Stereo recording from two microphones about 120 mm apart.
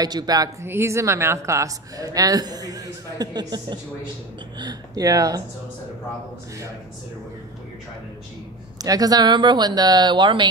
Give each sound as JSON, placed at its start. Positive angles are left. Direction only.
{"t": 0.0, "sound": "speech", "side_deg": -35}
{"t": 8.7, "sound": "speech", "side_deg": -30}